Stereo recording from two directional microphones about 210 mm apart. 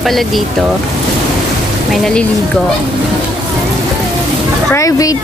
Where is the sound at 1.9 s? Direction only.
5° left (ahead or behind).